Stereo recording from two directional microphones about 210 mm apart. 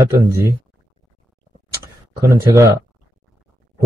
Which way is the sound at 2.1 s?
15° right (ahead or behind).